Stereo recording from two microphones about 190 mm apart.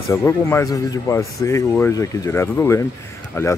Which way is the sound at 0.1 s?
15° left (ahead or behind).